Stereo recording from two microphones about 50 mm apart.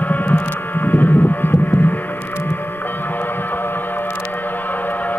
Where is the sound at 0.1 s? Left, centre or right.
Left.